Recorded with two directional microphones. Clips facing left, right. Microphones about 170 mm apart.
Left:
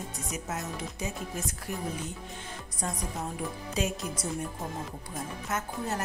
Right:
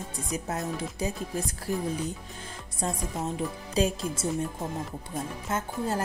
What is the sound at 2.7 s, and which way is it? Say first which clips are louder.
Speech: right 4 dB; 25° right (ahead or behind).